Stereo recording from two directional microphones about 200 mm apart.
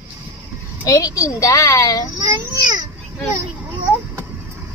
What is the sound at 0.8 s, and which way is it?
A child's voice, 15° left (ahead or behind).